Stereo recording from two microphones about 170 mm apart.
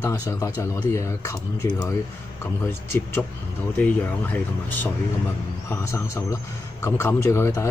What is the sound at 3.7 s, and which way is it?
Speech, 10° left (ahead or behind).